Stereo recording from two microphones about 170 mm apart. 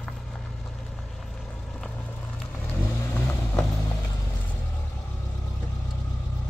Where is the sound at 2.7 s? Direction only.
15° left (ahead or behind).